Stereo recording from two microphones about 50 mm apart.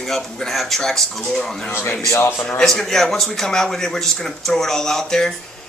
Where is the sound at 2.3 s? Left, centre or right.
Centre.